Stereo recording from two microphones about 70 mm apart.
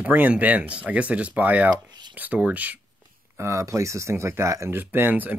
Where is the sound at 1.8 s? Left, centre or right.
Right.